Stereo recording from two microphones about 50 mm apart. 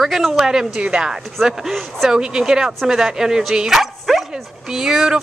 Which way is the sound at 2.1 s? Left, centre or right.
Centre.